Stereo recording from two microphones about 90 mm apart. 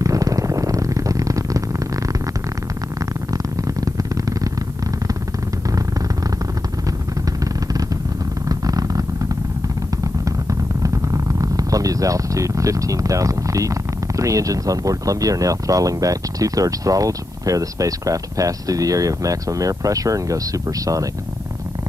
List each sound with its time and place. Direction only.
0.0 s a sound: 40° right (ahead or behind)
8.5 s purr: 40° right (ahead or behind)
10.8 s speech: 40° right (ahead or behind)